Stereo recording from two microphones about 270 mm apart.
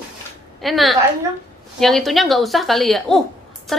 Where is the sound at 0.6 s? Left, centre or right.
Centre.